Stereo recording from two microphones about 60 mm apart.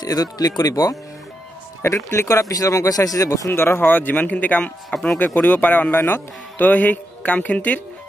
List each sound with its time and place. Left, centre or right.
0.0 s speech: left
1.8 s speech: left
3.4 s speech: left